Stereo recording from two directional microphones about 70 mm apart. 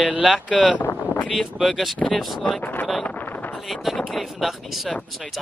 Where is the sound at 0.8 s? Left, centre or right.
Left.